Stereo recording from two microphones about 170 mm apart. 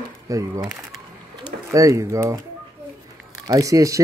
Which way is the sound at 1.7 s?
20° right (ahead or behind).